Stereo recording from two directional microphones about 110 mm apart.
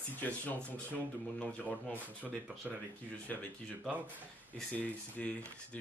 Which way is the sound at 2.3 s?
5° right (ahead or behind).